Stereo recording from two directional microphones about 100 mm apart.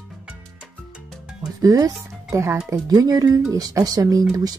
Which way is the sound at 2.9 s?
40° right (ahead or behind).